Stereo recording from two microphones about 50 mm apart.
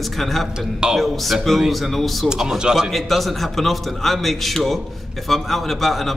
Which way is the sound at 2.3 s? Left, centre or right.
Centre.